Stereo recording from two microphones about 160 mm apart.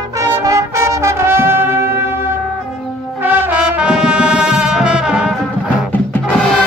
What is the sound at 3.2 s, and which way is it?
Brass instrument, 10° right (ahead or behind).